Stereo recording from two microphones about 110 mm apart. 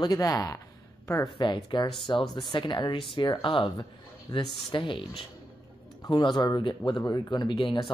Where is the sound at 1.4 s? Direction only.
45° left (ahead or behind).